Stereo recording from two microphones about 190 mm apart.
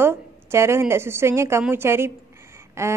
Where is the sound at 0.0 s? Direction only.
15° right (ahead or behind).